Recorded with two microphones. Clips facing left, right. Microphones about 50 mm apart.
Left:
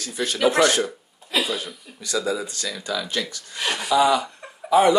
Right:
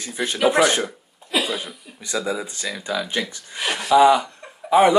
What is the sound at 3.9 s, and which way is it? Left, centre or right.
Speech, centre.